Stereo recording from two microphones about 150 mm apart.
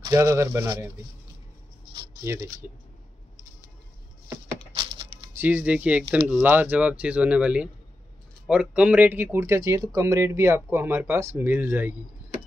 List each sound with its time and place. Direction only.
0.0 s speech: 20° right (ahead or behind)
2.2 s speech: 20° right (ahead or behind)
5.3 s speech: 10° right (ahead or behind)